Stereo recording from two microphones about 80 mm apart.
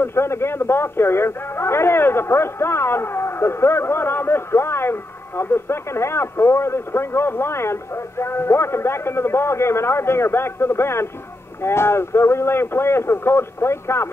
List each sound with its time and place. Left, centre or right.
0.0 s speech: left